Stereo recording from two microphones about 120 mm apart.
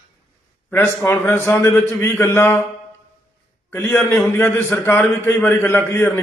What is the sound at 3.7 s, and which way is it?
A man's voice, 20° left (ahead or behind).